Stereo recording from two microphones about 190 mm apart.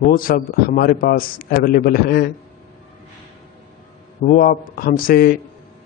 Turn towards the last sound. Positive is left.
turn(degrees=50)  # may be behind; listen again after turning